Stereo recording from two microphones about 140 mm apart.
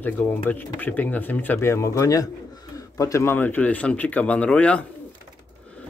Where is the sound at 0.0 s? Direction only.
15° left (ahead or behind).